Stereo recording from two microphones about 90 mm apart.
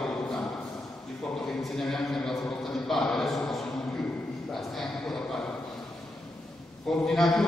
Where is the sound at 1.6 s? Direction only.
5° left (ahead or behind).